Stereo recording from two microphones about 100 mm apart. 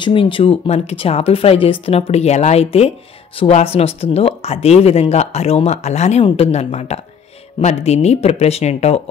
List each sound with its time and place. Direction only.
0.0 s speech: 60° left (ahead or behind); by 2.9 s 90° left
3.3 s speech: 75° left (ahead or behind)
6.2 s speech: 70° left (ahead or behind); by 9.0 s 90° left